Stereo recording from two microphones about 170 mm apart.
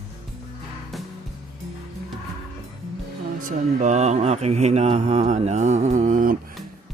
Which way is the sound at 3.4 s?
45° right (ahead or behind).